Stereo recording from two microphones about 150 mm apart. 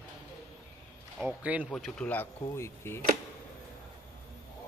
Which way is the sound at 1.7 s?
5° left (ahead or behind).